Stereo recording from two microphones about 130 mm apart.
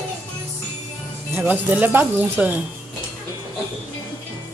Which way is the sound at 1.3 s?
15° right (ahead or behind).